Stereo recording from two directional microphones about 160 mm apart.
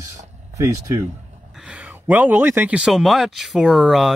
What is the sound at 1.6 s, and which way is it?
Speech, 10° right (ahead or behind).